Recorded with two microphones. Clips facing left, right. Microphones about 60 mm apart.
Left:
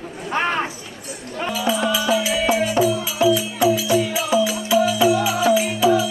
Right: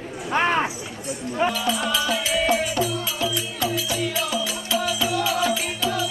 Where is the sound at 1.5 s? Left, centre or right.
Centre.